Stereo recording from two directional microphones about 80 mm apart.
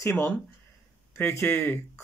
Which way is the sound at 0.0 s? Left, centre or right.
Left.